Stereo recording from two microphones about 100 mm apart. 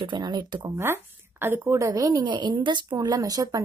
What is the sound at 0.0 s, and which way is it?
Speech, 50° right (ahead or behind).